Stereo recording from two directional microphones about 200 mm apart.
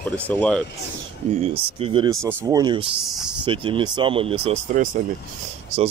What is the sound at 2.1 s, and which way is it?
Speech, 15° right (ahead or behind).